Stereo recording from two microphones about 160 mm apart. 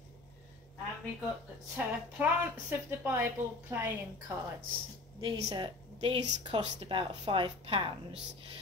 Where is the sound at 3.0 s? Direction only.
15° right (ahead or behind).